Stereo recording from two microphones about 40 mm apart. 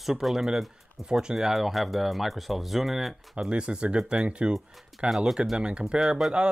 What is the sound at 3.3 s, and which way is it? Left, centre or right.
Speech, right.